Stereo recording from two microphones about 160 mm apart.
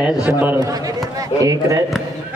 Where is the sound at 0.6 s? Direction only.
20° right (ahead or behind).